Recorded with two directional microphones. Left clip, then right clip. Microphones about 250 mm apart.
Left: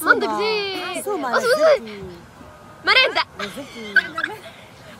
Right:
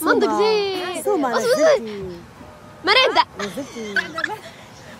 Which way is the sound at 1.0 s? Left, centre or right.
Right.